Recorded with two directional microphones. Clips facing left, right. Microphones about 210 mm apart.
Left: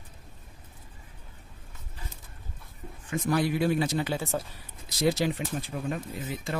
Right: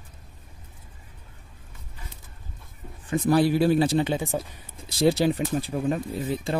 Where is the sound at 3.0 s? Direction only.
35° right (ahead or behind).